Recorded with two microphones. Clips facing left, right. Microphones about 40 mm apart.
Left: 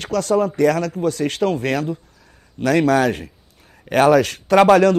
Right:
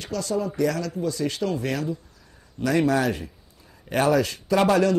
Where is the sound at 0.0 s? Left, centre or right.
Left.